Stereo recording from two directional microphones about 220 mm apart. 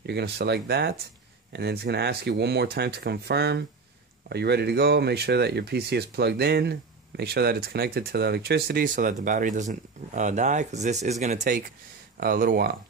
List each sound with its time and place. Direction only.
0.0 s speech: 50° right (ahead or behind)